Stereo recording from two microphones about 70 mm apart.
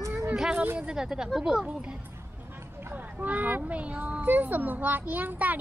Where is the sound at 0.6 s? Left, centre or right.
Right.